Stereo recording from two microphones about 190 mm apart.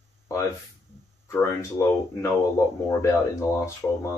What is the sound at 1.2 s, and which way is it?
Speech, 15° left (ahead or behind).